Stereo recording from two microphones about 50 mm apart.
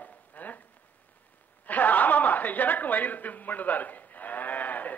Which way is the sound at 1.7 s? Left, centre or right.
Left.